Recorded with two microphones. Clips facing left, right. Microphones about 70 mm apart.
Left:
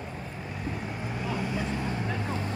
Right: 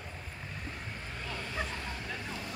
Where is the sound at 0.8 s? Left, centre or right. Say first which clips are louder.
Left 8 dB; centre.